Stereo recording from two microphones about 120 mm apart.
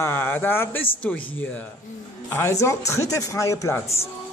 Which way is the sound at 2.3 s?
20° left (ahead or behind).